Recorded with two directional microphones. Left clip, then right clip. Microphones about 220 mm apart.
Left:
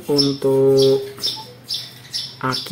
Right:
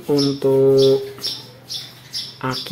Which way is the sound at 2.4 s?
Centre (ahead or behind).